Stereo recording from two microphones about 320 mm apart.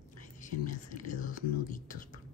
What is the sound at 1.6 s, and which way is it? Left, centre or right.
Speech, left.